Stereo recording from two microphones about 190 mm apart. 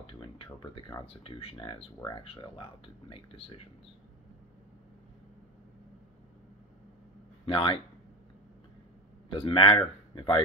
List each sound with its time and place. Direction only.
0.0 s speech: 25° left (ahead or behind)
7.4 s speech: 30° left (ahead or behind)
9.3 s speech: 30° left (ahead or behind)